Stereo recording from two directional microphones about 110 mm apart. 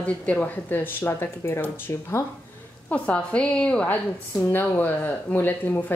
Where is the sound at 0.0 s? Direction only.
10° left (ahead or behind).